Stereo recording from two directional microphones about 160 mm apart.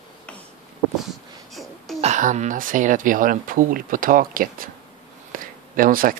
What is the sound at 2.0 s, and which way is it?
Speech, 50° right (ahead or behind).